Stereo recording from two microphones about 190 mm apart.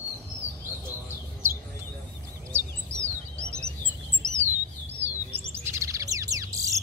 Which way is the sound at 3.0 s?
5° left (ahead or behind).